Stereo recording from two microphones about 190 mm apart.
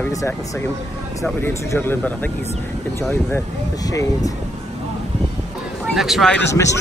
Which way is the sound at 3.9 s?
15° left (ahead or behind).